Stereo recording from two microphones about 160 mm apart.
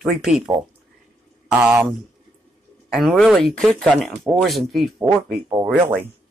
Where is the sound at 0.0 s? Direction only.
Centre (ahead or behind).